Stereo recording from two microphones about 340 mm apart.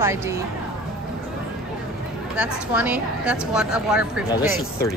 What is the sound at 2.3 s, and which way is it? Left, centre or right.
A woman's voice, centre.